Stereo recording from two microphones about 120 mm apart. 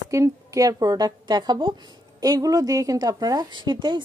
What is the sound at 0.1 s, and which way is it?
Speech, 25° right (ahead or behind).